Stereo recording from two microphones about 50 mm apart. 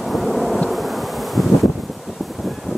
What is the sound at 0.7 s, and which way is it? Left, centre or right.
Bee, centre.